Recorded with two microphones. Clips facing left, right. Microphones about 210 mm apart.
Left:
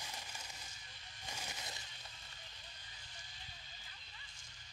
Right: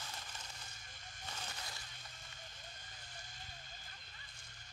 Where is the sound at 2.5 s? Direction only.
50° right (ahead or behind).